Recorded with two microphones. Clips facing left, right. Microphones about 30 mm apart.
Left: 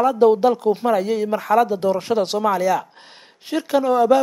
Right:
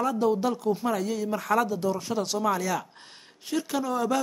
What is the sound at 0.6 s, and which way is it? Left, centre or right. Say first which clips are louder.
Speech: left 7 dB; left.